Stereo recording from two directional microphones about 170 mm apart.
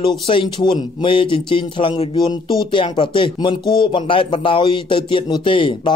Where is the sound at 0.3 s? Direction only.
30° left (ahead or behind).